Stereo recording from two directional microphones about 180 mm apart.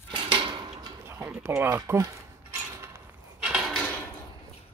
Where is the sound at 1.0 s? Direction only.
10° right (ahead or behind).